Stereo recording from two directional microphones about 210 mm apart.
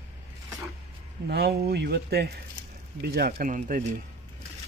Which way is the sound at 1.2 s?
50° right (ahead or behind).